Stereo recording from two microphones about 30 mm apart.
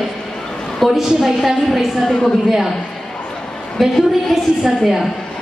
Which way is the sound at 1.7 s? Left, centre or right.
Centre.